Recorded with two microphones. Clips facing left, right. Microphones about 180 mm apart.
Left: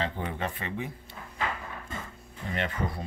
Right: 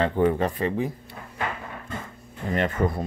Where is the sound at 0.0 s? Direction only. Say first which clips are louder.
Right 11 dB; 55° right (ahead or behind); by 0.9 s 35° right (ahead or behind).